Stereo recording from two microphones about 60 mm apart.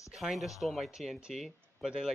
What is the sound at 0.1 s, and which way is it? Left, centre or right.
Speech, centre.